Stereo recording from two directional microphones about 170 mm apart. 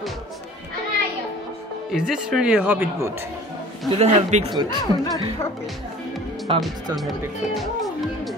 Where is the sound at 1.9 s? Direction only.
5° right (ahead or behind).